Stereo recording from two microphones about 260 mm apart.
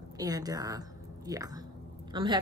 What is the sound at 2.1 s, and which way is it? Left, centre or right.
Speech, centre.